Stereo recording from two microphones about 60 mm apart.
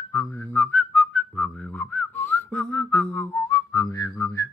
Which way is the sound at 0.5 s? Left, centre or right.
Left.